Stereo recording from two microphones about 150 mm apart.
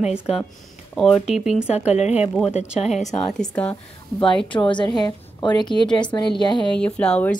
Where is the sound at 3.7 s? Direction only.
35° left (ahead or behind).